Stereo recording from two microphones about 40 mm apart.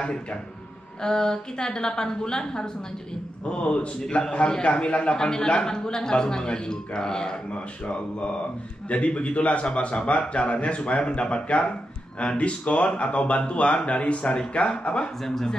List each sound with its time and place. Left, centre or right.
0.0 s speech: left
5.1 s speech: centre